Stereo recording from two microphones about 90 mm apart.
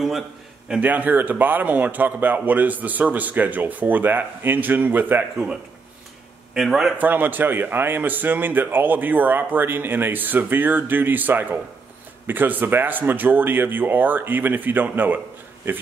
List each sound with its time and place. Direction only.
0.7 s speech: 15° right (ahead or behind)
6.5 s a man's voice: 5° right (ahead or behind)
7.0 s speech: 20° right (ahead or behind)